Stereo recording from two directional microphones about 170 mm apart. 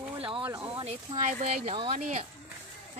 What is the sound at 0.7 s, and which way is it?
Speech, 40° right (ahead or behind).